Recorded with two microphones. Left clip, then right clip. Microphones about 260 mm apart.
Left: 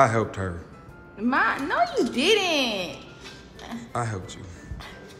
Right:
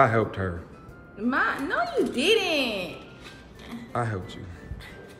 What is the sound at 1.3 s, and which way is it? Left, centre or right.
A child's voice, left.